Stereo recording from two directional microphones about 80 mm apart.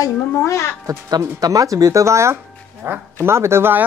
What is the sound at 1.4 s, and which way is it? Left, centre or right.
Speech, right.